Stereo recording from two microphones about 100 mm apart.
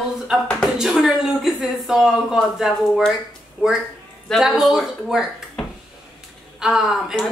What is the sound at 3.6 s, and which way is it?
A woman's voice, 10° right (ahead or behind).